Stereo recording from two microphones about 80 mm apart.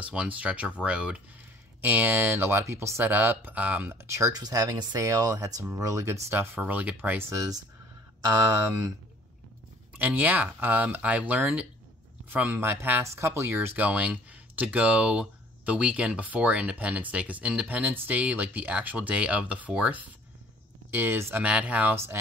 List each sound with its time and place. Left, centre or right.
0.0 s speech: centre
1.8 s speech: right
4.0 s speech: right
4.3 s speech: right
6.3 s speech: right
7.2 s speech: right
9.9 s speech: right
13.0 s speech: right; by 20.1 s centre
20.9 s speech: right
21.5 s speech: centre
21.9 s speech: right